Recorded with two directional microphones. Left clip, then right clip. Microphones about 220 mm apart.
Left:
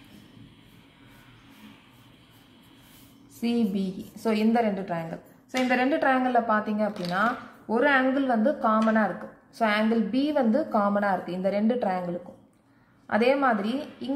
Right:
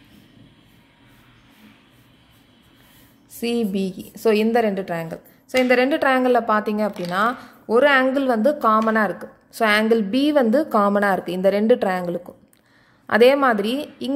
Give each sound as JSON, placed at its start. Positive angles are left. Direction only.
{"t": 3.4, "sound": "a woman's voice", "side_deg": -45}
{"t": 13.0, "sound": "a woman's voice", "side_deg": -50}